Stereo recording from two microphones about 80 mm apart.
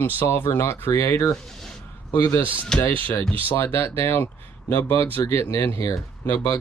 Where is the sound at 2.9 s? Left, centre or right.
Left.